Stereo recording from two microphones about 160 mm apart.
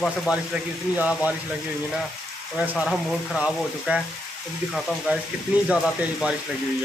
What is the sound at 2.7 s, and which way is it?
Speech, 5° right (ahead or behind).